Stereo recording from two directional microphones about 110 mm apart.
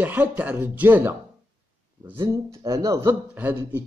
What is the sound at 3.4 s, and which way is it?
Speech, 20° right (ahead or behind).